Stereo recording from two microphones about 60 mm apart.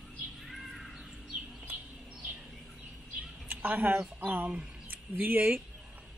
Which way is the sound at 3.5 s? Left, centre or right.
Right.